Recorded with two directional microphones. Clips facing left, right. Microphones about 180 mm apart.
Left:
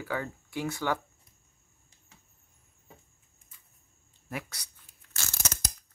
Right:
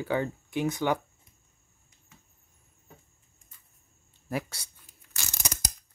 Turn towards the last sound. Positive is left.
turn(degrees=-15)  # may be behind; listen again after turning